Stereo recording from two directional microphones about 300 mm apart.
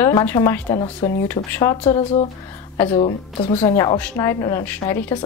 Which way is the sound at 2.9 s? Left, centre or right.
Centre.